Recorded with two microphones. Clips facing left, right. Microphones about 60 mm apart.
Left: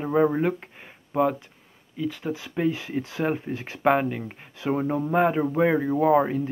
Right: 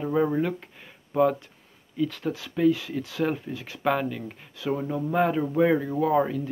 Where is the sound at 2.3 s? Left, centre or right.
Left.